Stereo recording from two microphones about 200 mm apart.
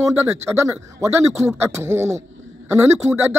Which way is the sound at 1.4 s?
15° right (ahead or behind).